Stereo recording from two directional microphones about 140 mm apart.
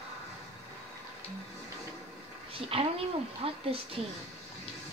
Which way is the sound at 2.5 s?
40° right (ahead or behind).